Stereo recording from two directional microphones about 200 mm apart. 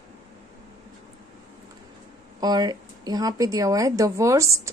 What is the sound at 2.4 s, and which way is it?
A woman's voice, 20° right (ahead or behind).